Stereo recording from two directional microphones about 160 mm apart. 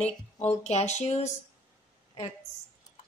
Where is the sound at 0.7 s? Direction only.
45° left (ahead or behind).